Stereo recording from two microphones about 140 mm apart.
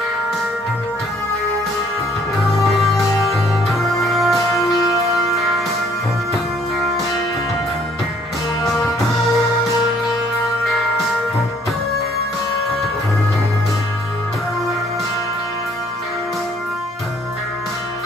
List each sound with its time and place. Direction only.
2.8 s music: centre (ahead or behind)